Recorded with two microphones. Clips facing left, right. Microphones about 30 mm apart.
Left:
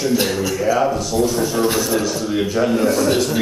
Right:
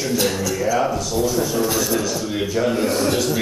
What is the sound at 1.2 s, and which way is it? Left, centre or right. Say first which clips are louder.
Speech: left 2 dB; left.